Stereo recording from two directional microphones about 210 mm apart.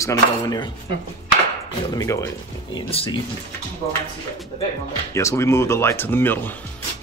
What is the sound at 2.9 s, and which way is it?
Speech, 25° left (ahead or behind).